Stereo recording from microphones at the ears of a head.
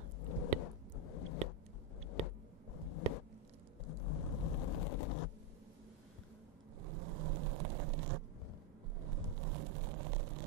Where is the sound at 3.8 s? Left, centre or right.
Left.